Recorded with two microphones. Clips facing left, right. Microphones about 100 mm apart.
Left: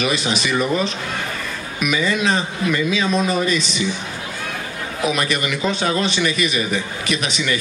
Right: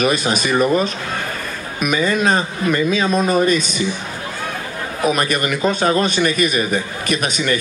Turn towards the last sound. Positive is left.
turn(degrees=-45)  # may be behind; listen again after turning